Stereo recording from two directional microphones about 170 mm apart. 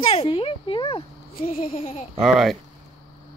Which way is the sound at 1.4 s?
40° left (ahead or behind).